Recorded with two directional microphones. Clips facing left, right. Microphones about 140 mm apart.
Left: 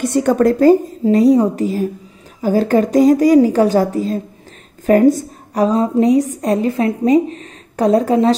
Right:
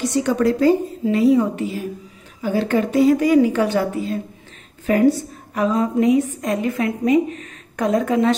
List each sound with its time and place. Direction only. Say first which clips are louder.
0.0 s a woman's voice: left 5 dB; 50° left (ahead or behind); by 8.4 s 35° left (ahead or behind)